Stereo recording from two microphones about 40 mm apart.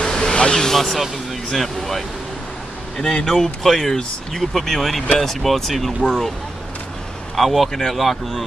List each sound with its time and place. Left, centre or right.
0.0 s vehicle: centre
0.4 s speech: centre
3.0 s speech: centre
3.3 s speech: centre
7.3 s speech: centre